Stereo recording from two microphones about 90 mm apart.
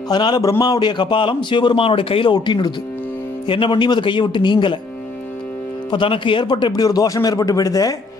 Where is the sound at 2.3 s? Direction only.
55° left (ahead or behind).